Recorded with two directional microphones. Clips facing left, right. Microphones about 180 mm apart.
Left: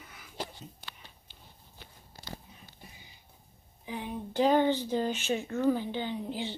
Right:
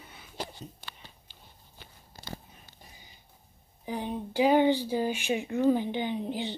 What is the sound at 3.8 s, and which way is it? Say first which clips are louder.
Speech: right 4 dB; 40° right (ahead or behind).